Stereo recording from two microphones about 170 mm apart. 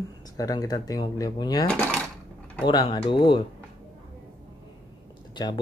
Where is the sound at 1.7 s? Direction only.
5° left (ahead or behind).